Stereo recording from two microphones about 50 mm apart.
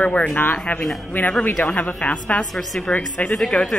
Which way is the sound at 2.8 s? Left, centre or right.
Left.